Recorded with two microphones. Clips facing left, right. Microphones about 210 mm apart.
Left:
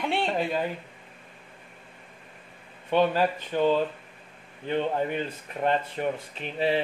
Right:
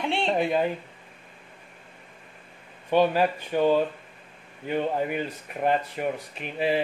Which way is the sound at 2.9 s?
15° right (ahead or behind).